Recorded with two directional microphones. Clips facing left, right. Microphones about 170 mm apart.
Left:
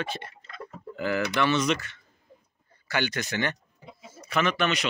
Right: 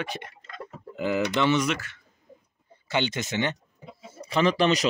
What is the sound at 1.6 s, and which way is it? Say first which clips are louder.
Speech: left 2 dB; 5° right (ahead or behind).